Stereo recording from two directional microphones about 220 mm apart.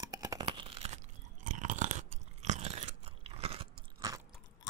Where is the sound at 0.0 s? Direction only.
15° right (ahead or behind).